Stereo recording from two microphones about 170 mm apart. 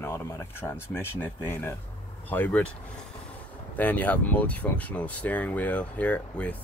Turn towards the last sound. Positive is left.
turn(degrees=10)  # may be behind; listen again after turning